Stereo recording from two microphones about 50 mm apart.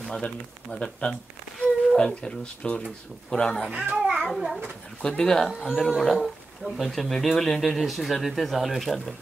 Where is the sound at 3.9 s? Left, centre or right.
Centre.